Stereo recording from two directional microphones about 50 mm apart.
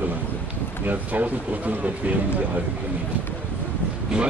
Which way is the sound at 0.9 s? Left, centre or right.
Right.